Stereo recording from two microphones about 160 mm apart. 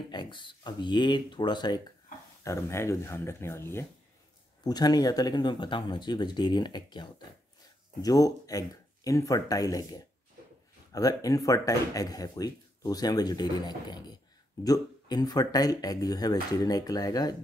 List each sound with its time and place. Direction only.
0.1 s speech: 30° left (ahead or behind)